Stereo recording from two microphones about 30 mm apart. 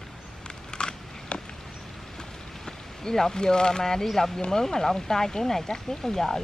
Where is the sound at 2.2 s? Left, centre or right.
Centre.